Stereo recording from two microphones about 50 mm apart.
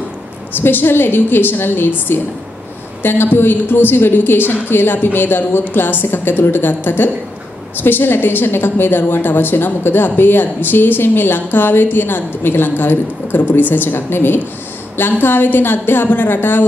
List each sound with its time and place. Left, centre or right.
0.6 s a woman's voice: left